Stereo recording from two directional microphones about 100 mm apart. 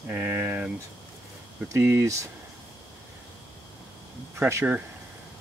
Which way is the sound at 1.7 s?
25° right (ahead or behind).